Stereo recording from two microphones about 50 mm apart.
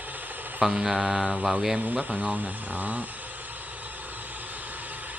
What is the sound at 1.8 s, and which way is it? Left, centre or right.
Speech, right.